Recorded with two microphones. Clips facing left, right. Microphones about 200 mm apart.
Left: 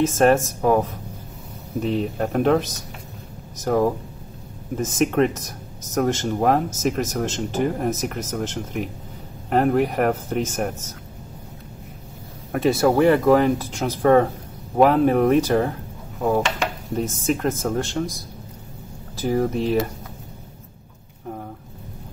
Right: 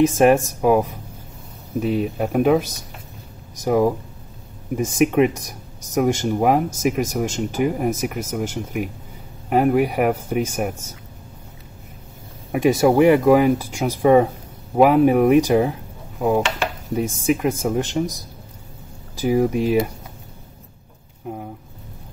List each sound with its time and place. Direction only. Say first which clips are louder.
0.0 s speech: right 2 dB; 15° right (ahead or behind)
12.5 s speech: right 3 dB; 15° right (ahead or behind)
19.1 s speech: right 3 dB; 10° right (ahead or behind)